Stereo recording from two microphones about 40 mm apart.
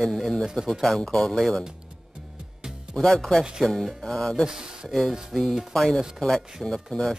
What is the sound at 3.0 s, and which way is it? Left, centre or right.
Speech, centre.